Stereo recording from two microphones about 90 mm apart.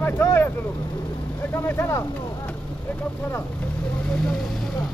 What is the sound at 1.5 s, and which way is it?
Speech, 25° left (ahead or behind).